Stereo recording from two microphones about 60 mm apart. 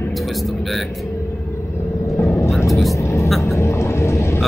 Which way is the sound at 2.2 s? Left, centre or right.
Left.